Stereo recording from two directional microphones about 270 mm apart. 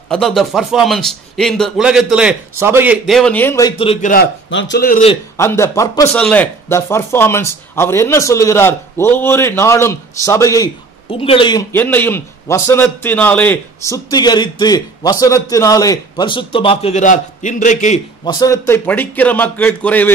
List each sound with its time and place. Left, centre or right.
0.1 s a man's voice: centre; by 4.3 s left
4.5 s a man's voice: left
5.4 s speech: centre
18.3 s speech: centre